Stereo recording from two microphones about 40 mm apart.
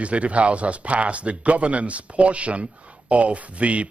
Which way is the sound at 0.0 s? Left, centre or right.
Right.